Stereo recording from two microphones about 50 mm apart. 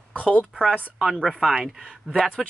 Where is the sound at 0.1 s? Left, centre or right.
Left.